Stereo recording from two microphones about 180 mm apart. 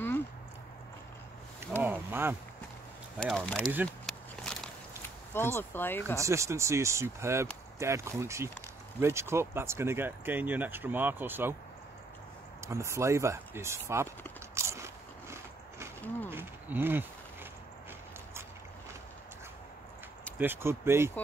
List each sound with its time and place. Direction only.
1.8 s a sound: 10° right (ahead or behind)
3.2 s speech: 5° left (ahead or behind)
4.0 s walk: centre (ahead or behind)
5.0 s speech: 10° left (ahead or behind)
6.1 s speech: 15° right (ahead or behind)
12.6 s speech: 15° right (ahead or behind)
14.5 s biting: 15° right (ahead or behind)
16.3 s speech: 10° right (ahead or behind)
20.3 s speech: 10° right (ahead or behind)